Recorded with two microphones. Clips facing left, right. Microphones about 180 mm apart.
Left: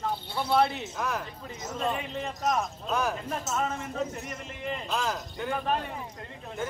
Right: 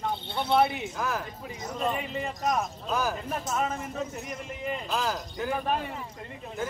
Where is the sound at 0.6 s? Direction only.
Centre (ahead or behind).